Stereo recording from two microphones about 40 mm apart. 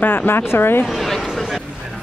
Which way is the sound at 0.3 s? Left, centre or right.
Left.